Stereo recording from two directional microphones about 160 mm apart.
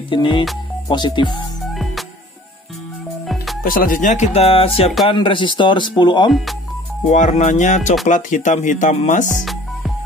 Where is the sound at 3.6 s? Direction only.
65° left (ahead or behind); by 6.3 s 30° left (ahead or behind).